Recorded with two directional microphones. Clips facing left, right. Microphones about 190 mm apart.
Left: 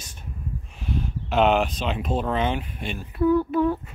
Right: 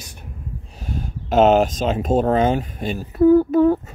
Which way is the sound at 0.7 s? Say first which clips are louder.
Even; 45° right (ahead or behind).